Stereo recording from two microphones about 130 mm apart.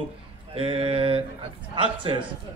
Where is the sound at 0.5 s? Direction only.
45° right (ahead or behind).